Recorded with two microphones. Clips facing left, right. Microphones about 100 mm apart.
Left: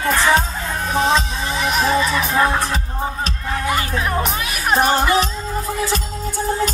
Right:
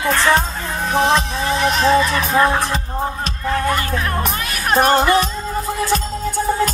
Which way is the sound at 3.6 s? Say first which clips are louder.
Even; 10° left (ahead or behind).